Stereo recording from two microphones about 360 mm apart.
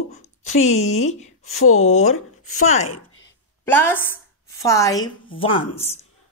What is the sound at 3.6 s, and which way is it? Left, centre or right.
A woman's voice, centre.